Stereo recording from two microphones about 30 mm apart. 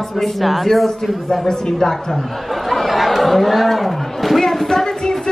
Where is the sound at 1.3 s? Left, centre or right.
Centre.